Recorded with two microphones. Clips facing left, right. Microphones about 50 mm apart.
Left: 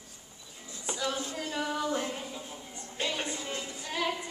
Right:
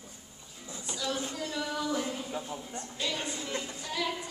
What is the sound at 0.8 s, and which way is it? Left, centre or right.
Music, left.